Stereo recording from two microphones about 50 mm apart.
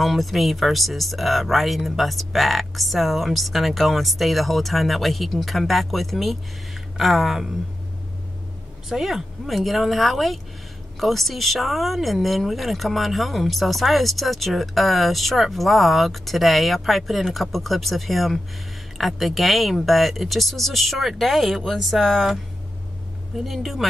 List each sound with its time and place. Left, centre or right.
0.0 s speech: centre
8.8 s speech: centre